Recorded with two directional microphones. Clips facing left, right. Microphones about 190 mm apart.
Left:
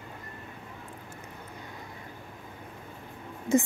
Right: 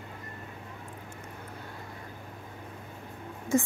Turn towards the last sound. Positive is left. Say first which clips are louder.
# left 2 dB
turn(degrees=20)  # may be behind; listen again after turning